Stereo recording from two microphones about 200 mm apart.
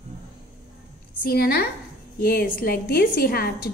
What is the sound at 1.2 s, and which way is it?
A woman's voice, 50° left (ahead or behind).